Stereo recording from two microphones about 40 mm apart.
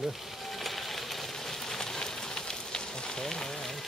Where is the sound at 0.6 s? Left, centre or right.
Centre.